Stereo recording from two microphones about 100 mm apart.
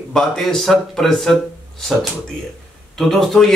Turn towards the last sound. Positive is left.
turn(degrees=0)  # may be behind; listen again after turning